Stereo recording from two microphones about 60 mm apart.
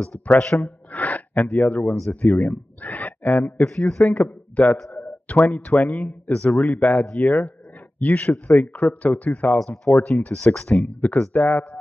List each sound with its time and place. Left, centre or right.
0.0 s speech: centre
0.6 s gasp: left
2.2 s speech: left
3.6 s speech: centre
4.0 s a man's voice: left